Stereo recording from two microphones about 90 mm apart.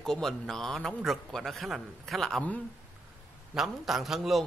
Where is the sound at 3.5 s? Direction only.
5° right (ahead or behind).